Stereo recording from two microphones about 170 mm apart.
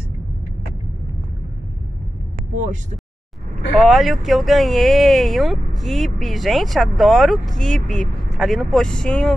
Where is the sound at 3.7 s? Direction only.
Centre (ahead or behind).